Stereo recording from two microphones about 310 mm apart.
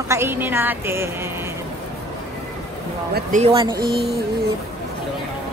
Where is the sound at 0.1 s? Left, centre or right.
Centre.